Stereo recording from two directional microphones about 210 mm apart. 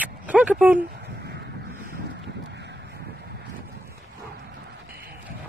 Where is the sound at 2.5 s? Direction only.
55° right (ahead or behind).